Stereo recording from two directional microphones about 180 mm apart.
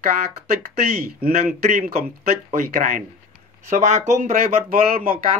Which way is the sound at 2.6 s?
50° right (ahead or behind).